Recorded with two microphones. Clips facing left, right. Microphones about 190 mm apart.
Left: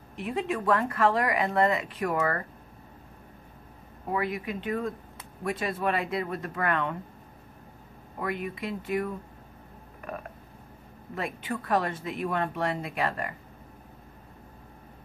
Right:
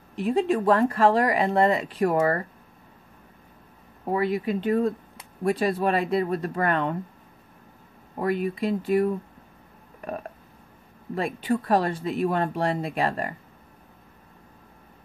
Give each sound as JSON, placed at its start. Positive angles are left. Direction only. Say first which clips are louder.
{"t": 0.1, "sound": "speech", "louder": "right 7 dB", "side_deg": -35}
{"t": 4.1, "sound": "speech", "louder": "right 6 dB", "side_deg": -30}
{"t": 8.2, "sound": "speech", "louder": "right 7 dB", "side_deg": -35}
{"t": 11.1, "sound": "speech", "louder": "right 7 dB", "side_deg": -30}